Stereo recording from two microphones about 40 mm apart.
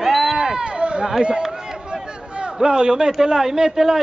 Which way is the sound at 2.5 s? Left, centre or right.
Centre.